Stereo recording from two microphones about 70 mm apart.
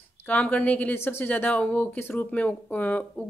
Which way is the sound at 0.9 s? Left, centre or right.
Left.